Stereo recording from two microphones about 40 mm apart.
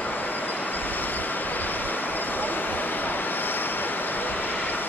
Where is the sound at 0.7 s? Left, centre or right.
Left.